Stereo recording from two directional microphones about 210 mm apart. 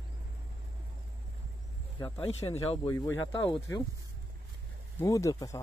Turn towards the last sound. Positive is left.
turn(degrees=15)  # may be behind; listen again after turning